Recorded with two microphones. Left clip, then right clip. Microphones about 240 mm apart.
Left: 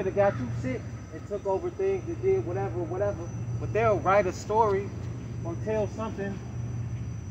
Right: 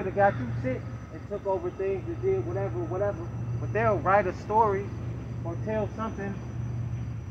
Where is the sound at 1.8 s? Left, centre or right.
Left.